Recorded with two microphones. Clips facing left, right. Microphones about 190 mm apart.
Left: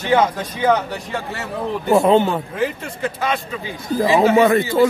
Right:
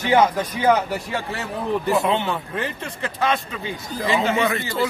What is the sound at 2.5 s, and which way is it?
Speech, centre (ahead or behind).